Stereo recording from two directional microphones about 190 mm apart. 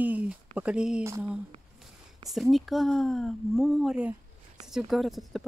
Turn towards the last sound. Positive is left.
turn(degrees=0)  # may be behind; listen again after turning